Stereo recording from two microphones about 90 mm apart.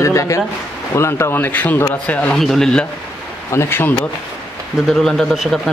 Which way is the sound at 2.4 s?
5° left (ahead or behind).